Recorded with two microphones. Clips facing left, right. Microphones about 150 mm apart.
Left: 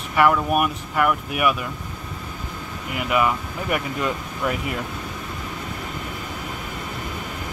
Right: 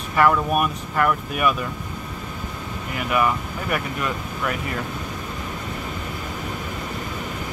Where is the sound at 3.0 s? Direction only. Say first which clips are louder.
Even; 20° left (ahead or behind).